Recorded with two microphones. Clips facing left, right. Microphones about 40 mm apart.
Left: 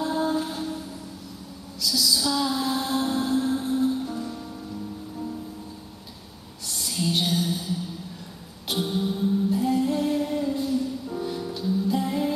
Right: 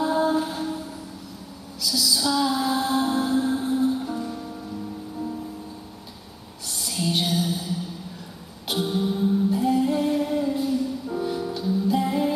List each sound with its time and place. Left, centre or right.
0.0 s a sound: centre
1.8 s music: centre
6.7 s music: centre